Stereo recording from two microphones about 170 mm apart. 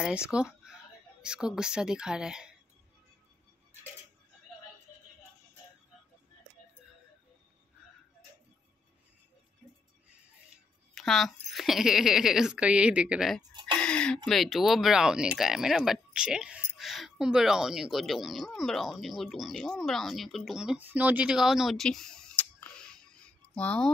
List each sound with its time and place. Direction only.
0.3 s speech: 5° right (ahead or behind)
11.0 s speech: centre (ahead or behind)